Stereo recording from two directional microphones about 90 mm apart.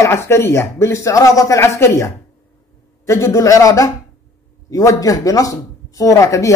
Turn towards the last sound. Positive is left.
turn(degrees=35)  # may be behind; listen again after turning